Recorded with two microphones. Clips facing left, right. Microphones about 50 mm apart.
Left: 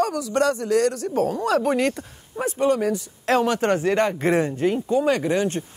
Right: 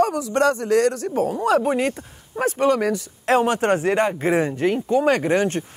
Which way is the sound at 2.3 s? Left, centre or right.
Right.